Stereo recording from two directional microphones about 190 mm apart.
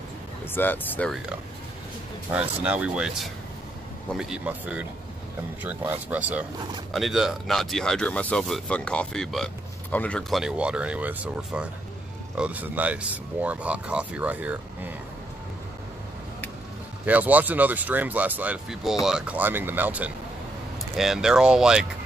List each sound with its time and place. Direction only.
0.5 s speech: 10° left (ahead or behind)
2.6 s speech: 5° right (ahead or behind)
17.0 s speech: 10° right (ahead or behind)